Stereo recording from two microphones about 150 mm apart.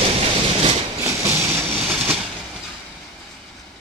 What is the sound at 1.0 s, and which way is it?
Train, 20° right (ahead or behind).